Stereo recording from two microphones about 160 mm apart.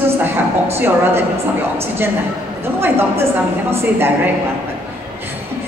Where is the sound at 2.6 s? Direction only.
15° right (ahead or behind).